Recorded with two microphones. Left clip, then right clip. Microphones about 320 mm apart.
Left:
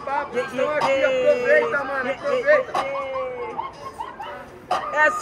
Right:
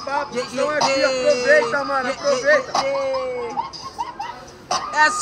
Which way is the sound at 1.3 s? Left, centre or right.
Right.